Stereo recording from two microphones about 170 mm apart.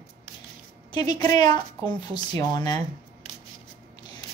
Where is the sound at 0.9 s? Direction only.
25° left (ahead or behind).